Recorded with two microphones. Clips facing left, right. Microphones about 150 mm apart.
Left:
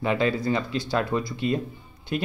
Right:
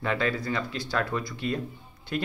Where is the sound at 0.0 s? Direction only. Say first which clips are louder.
Left 4 dB; 20° left (ahead or behind).